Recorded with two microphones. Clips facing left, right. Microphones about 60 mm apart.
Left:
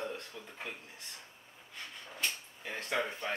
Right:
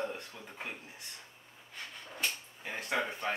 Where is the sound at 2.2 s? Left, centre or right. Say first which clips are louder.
Right 1 dB; centre.